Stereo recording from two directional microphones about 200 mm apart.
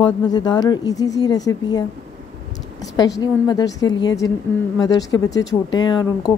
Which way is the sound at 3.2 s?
20° left (ahead or behind).